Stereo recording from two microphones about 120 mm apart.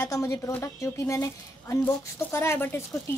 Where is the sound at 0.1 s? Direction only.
25° left (ahead or behind).